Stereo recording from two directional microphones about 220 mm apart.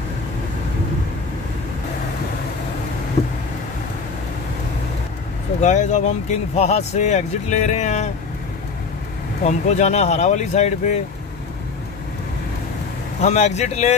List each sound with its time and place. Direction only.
5.6 s speech: 35° left (ahead or behind)
9.4 s speech: 30° left (ahead or behind)
13.2 s speech: 30° left (ahead or behind)